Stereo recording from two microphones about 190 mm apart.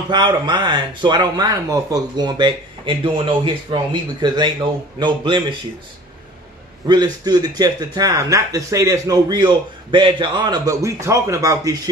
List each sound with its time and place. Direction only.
0.1 s speech: 25° right (ahead or behind)
6.9 s speech: 20° right (ahead or behind)